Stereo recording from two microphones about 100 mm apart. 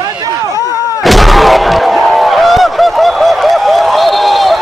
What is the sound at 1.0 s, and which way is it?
Artillery fire, centre (ahead or behind).